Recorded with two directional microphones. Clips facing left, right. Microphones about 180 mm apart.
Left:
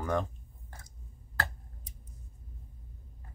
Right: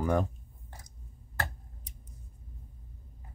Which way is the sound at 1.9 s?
70° right (ahead or behind).